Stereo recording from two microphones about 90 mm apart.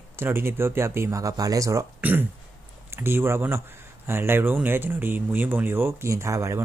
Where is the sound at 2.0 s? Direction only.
20° right (ahead or behind).